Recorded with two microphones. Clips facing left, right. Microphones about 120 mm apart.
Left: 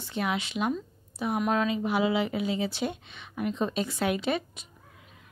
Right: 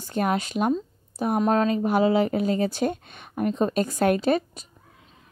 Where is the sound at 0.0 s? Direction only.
45° right (ahead or behind).